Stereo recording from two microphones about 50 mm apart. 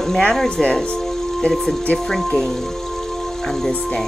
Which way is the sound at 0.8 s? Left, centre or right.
Centre.